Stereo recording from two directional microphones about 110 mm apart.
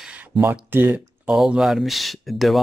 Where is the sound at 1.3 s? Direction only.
5° right (ahead or behind).